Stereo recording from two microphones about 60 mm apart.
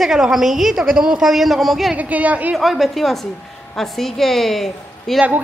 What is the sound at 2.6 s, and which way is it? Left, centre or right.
A woman's voice, centre.